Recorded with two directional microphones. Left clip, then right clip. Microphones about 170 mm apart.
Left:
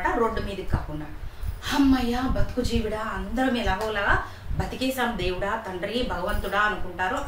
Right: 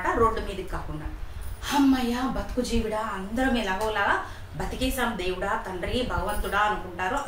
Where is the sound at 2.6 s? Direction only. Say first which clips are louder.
Right 1 dB; 20° left (ahead or behind).